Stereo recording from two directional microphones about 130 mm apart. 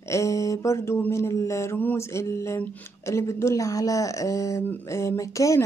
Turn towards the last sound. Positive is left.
turn(degrees=25)  # may be behind; listen again after turning